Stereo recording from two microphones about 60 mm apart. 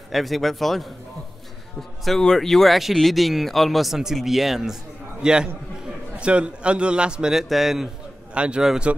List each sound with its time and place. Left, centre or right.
0.1 s a man's voice: centre
8.4 s a man's voice: centre